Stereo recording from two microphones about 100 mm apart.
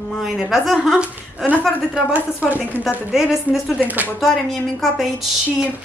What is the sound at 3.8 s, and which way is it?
Speech, 15° right (ahead or behind).